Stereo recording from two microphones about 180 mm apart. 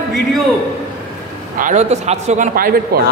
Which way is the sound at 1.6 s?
40° right (ahead or behind).